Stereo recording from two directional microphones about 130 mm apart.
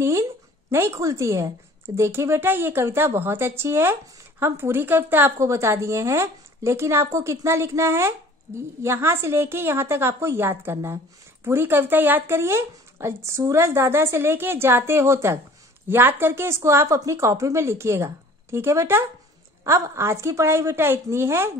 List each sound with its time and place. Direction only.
0.0 s a woman's voice: 20° right (ahead or behind)